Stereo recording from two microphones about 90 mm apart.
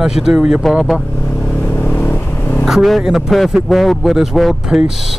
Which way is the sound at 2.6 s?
5° right (ahead or behind).